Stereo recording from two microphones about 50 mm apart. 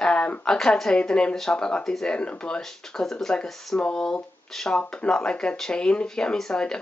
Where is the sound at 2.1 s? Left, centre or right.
Left.